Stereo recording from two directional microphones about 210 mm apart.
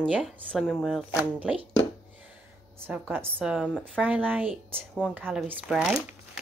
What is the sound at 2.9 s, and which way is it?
Speech, 10° right (ahead or behind).